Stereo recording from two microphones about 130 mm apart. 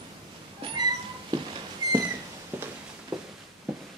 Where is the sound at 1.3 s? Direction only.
30° right (ahead or behind).